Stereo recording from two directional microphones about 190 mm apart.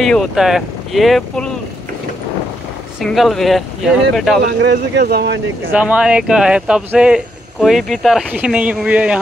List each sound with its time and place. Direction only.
0.0 s speech: centre (ahead or behind)
3.0 s speech: centre (ahead or behind)
4.6 s speech: 60° right (ahead or behind)
5.7 s speech: 5° right (ahead or behind)